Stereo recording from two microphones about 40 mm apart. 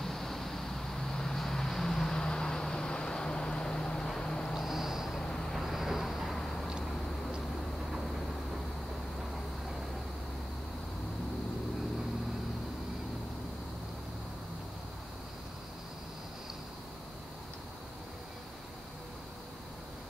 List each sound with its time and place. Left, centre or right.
0.0 s vehicle: centre
4.6 s vehicle: centre
5.2 s vehicle: centre
5.5 s vehicle: centre
6.3 s vehicle: centre